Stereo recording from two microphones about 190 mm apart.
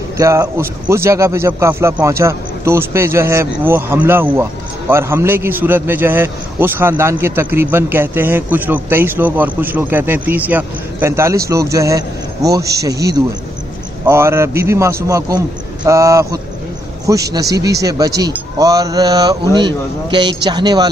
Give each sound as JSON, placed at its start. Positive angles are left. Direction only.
{"t": 0.2, "sound": "a man's voice", "side_deg": -15}